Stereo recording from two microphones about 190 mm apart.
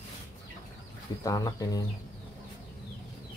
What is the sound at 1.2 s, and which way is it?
Speech, 20° left (ahead or behind).